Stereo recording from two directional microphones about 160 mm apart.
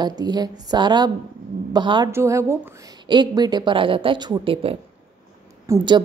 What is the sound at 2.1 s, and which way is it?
Speech, 15° right (ahead or behind).